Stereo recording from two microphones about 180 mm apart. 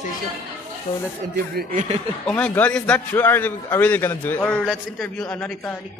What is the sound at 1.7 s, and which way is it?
Speech, 45° right (ahead or behind).